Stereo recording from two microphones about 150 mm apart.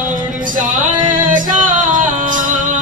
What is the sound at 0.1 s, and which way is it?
Music, 60° right (ahead or behind).